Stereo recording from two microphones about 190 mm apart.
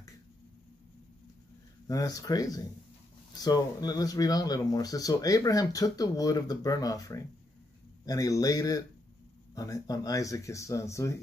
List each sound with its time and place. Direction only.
1.9 s speech: 20° left (ahead or behind)